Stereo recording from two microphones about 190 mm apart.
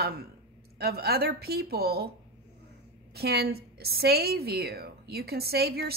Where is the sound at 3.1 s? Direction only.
55° right (ahead or behind).